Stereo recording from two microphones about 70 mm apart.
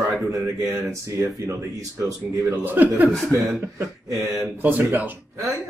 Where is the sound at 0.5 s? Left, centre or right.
Right.